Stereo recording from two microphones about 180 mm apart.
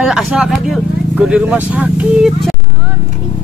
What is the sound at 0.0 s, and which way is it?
Speech, 5° right (ahead or behind).